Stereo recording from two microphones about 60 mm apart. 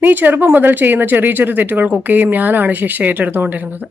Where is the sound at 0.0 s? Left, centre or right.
Right.